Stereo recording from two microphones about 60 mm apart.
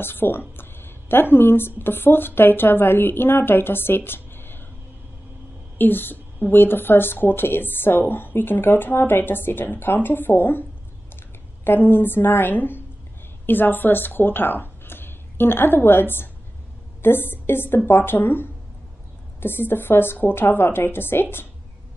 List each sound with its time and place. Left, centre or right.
0.0 s a woman's voice: left
5.8 s a woman's voice: left
11.6 s a woman's voice: left